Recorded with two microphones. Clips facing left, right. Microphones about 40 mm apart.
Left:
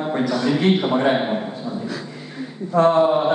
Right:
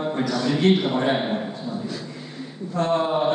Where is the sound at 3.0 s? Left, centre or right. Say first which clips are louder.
Left 5 dB; centre.